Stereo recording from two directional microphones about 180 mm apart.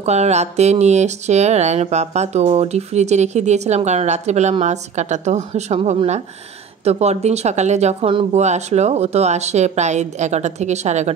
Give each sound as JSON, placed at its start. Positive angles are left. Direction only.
{"t": 0.0, "sound": "speech", "side_deg": -40}